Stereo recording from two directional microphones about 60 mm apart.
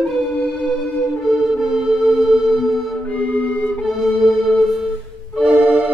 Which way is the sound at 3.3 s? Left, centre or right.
Left.